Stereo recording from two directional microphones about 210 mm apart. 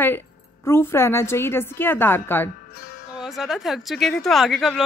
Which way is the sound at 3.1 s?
Centre (ahead or behind).